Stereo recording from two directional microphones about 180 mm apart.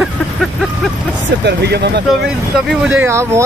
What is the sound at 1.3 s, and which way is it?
Speech, 70° right (ahead or behind).